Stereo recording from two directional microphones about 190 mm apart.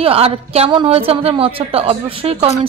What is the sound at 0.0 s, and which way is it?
A woman's voice, 30° right (ahead or behind).